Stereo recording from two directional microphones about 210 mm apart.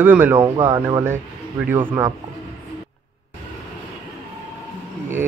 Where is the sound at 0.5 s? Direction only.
20° right (ahead or behind).